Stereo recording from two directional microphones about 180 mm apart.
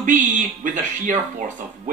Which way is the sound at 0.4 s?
45° right (ahead or behind).